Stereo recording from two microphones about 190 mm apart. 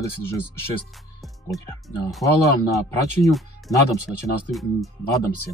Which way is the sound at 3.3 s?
Centre (ahead or behind).